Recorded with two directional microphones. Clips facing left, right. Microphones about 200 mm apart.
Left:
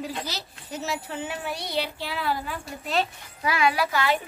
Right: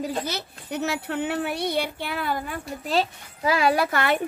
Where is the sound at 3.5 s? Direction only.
40° right (ahead or behind); by 4.2 s 55° right (ahead or behind).